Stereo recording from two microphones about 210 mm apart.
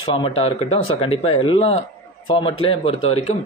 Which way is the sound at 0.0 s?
25° left (ahead or behind).